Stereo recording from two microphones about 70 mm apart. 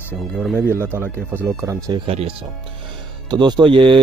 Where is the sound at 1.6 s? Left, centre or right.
Right.